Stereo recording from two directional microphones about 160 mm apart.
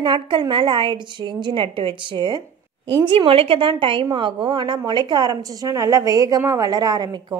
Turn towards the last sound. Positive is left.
turn(degrees=-25)  # may be behind; listen again after turning